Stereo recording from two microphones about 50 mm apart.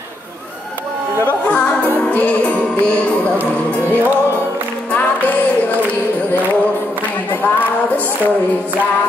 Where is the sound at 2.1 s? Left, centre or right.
Left.